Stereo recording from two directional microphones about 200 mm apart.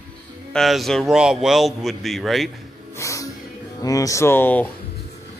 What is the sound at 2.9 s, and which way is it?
Music, 15° left (ahead or behind).